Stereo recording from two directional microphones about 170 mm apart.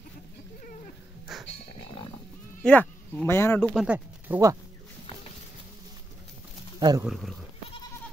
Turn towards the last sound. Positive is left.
turn(degrees=0)  # may be behind; listen again after turning